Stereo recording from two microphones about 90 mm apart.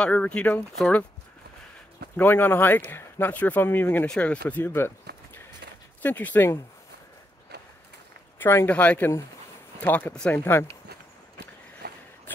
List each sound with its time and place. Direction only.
0.0 s speech: 15° left (ahead or behind)
2.1 s speech: 20° left (ahead or behind)
8.4 s speech: 25° left (ahead or behind)